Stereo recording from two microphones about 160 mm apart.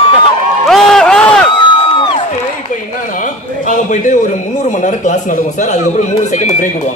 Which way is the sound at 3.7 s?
50° left (ahead or behind).